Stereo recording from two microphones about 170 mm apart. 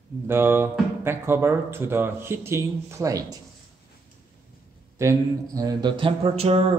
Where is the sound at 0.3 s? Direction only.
15° right (ahead or behind).